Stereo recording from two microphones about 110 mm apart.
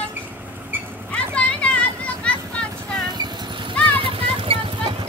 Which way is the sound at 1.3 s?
10° left (ahead or behind).